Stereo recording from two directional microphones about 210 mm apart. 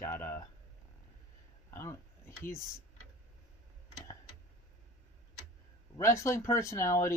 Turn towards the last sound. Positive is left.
turn(degrees=15)  # may be behind; listen again after turning